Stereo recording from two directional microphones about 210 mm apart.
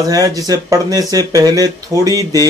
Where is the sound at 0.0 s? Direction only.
15° right (ahead or behind).